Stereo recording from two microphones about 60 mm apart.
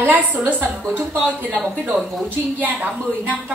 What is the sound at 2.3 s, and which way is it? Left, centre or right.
Speech, right.